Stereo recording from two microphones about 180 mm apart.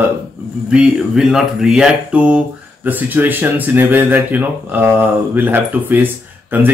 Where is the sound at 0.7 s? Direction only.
5° right (ahead or behind).